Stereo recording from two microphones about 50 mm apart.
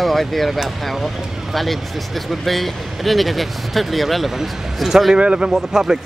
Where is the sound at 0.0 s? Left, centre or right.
Centre.